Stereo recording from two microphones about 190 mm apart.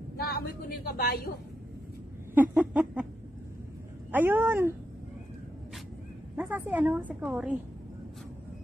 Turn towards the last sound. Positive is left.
turn(degrees=-5)  # may be behind; listen again after turning